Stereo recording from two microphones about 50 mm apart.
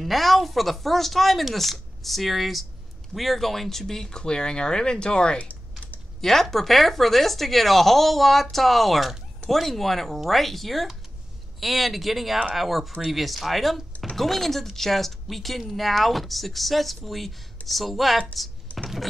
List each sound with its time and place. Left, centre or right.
0.0 s speech: centre
6.2 s speech: centre